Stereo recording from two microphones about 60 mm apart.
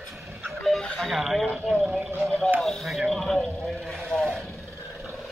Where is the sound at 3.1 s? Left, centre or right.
Centre.